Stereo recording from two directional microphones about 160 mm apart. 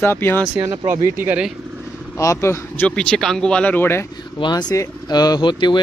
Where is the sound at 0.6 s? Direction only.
20° right (ahead or behind).